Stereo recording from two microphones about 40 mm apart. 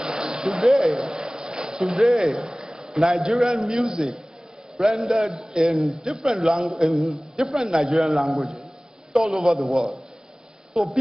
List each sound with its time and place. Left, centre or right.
0.0 s a sound: centre
0.6 s a man's voice: centre
0.9 s a sound: centre
2.3 s a man's voice: centre
7.0 s a woman's voice: centre
7.4 s a man's voice: centre
10.7 s a woman's voice: centre